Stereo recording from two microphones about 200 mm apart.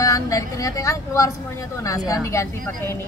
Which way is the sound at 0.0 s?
15° left (ahead or behind).